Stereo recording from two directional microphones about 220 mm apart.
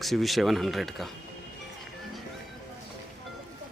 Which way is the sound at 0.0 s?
Centre (ahead or behind).